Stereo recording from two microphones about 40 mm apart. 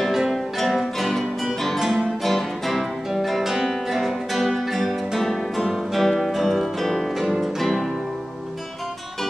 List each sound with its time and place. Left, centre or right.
0.1 s music: centre
0.6 s music: centre
1.8 s guitar: centre